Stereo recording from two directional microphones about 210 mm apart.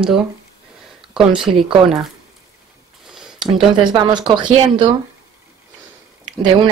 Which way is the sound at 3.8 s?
20° right (ahead or behind).